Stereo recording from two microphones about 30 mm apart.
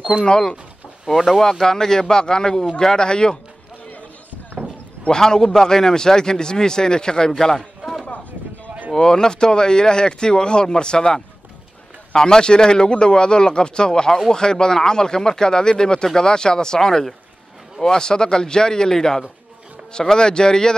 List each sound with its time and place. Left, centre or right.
0.2 s speech: left
1.1 s speech: centre
1.4 s speech: centre
5.2 s speech: centre
8.9 s speech: centre